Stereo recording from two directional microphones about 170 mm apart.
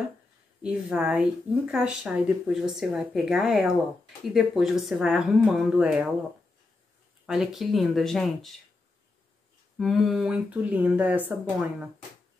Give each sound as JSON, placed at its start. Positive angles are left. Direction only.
{"t": 0.6, "sound": "a woman's voice", "side_deg": -5}
{"t": 7.2, "sound": "a woman's voice", "side_deg": 0}
{"t": 9.8, "sound": "speech", "side_deg": 0}